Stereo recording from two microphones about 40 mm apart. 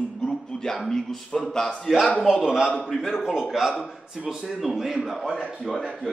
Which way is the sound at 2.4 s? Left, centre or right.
Centre.